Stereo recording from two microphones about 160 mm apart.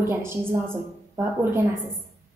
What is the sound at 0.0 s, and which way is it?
A woman's voice, 15° right (ahead or behind).